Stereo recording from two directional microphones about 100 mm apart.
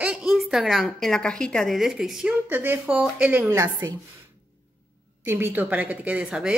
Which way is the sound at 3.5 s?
25° right (ahead or behind).